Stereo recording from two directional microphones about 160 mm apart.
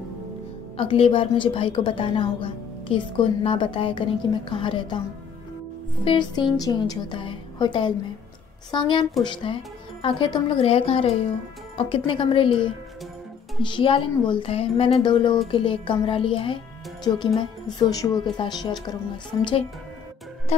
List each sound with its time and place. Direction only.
0.7 s a woman's voice: 35° left (ahead or behind)
6.0 s a woman's voice: 30° left (ahead or behind)